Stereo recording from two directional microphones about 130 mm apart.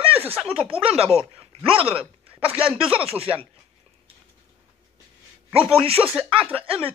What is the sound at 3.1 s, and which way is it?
Speech, 50° right (ahead or behind).